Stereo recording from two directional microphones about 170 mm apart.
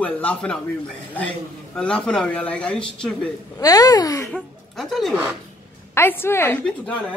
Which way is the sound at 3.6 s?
20° left (ahead or behind).